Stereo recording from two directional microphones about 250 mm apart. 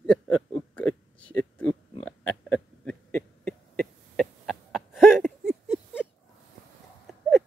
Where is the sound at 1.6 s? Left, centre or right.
Centre.